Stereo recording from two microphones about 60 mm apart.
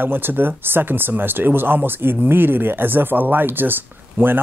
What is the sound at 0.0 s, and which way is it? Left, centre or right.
Speech, right.